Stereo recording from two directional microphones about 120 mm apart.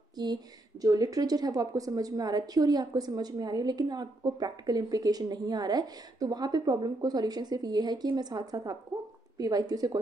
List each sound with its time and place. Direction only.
0.2 s a woman's voice: 35° right (ahead or behind)